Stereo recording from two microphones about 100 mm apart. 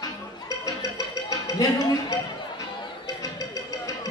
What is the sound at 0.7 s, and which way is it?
Music, 35° left (ahead or behind).